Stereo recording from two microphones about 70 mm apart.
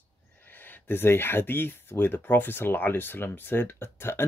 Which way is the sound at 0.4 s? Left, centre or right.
Left.